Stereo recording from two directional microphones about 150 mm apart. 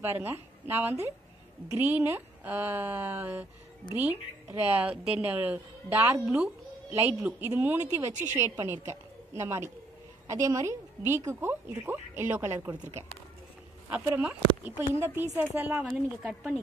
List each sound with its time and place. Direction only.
0.0 s a woman's voice: 15° right (ahead or behind)
13.8 s a woman's voice: 10° right (ahead or behind)
15.9 s a woman's voice: centre (ahead or behind)